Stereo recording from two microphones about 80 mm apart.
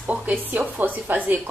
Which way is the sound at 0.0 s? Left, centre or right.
Centre.